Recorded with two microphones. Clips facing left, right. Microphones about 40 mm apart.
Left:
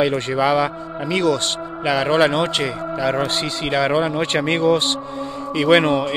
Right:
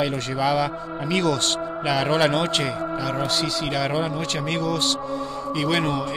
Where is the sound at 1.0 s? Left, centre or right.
Centre.